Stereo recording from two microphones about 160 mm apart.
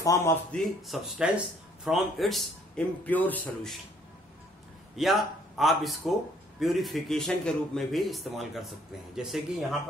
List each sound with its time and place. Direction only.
0.0 s a man's voice: 20° left (ahead or behind)
0.8 s speech: centre (ahead or behind)
4.9 s a man's voice: centre (ahead or behind)